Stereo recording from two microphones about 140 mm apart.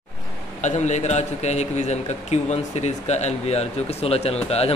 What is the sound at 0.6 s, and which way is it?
A man's voice, 55° left (ahead or behind).